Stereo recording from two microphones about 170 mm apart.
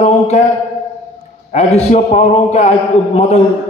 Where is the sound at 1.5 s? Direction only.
40° left (ahead or behind).